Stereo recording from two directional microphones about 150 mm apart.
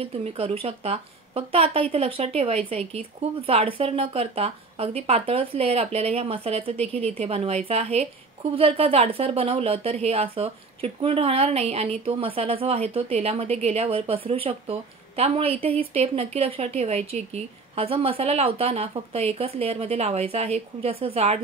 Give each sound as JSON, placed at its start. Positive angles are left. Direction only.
{"t": 0.0, "sound": "a woman's voice", "side_deg": -40}